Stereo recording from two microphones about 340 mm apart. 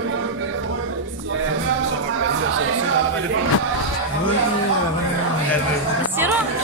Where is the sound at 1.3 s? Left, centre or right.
Right.